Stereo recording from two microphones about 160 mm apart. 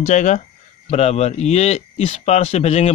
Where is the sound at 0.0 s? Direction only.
50° left (ahead or behind).